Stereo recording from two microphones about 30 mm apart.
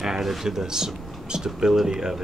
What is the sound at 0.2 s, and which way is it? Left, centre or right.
Speech, centre.